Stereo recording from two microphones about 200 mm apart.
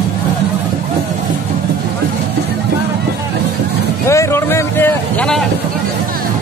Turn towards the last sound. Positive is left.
turn(degrees=5)  # may be behind; listen again after turning